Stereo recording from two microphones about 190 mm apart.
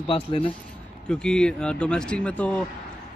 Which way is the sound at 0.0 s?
25° left (ahead or behind).